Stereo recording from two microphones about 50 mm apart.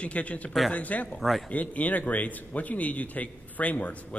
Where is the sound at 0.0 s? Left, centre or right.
Left.